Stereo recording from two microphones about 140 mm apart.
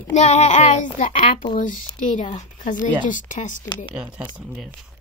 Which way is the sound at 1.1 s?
45° left (ahead or behind).